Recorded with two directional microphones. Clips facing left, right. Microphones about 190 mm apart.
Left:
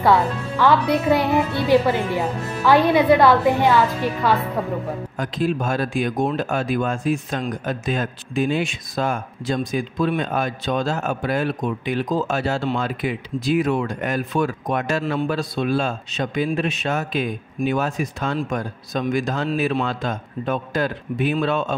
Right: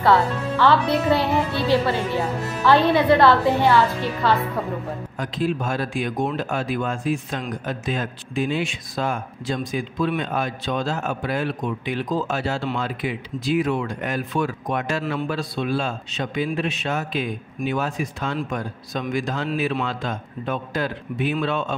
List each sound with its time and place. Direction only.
0.0 s a woman's voice: 15° left (ahead or behind)
5.1 s speech: 45° left (ahead or behind)